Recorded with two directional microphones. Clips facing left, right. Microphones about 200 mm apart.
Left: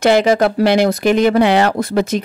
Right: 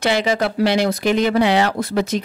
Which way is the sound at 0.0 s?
45° left (ahead or behind).